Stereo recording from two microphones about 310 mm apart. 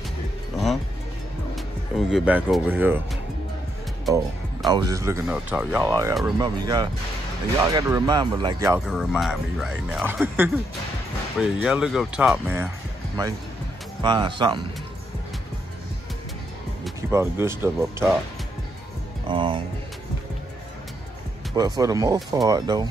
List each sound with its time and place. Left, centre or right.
1.5 s speech: centre
11.6 s speech: centre
14.0 s speech: centre
16.8 s speech: centre
19.2 s speech: centre
21.5 s speech: centre